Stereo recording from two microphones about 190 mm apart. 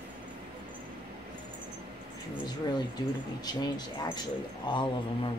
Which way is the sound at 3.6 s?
20° left (ahead or behind).